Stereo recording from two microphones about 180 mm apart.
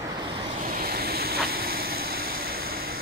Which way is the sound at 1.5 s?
55° right (ahead or behind).